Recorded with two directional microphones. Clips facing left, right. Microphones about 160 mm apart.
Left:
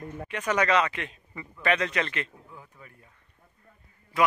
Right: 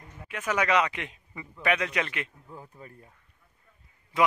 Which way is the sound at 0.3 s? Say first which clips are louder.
Left 1 dB; 5° right (ahead or behind).